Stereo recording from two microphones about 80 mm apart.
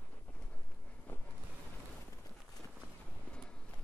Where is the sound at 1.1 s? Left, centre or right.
Left.